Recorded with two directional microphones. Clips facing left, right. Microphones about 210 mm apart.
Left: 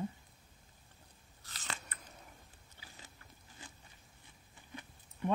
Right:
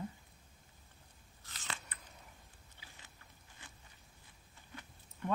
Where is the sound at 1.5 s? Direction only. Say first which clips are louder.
Left 1 dB; 40° left (ahead or behind).